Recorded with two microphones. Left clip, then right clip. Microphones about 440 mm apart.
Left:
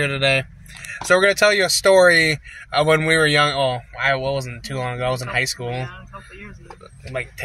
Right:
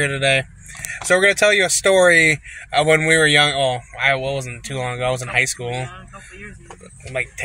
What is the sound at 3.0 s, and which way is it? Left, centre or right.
Speech, left.